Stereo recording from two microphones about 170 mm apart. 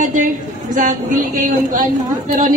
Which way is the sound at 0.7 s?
50° right (ahead or behind).